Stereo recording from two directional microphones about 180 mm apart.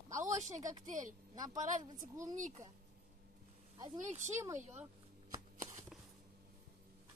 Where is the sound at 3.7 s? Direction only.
25° right (ahead or behind).